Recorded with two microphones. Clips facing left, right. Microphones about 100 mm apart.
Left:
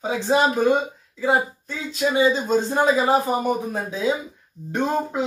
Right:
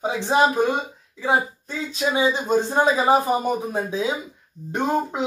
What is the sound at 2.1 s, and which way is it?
Speech, 15° right (ahead or behind).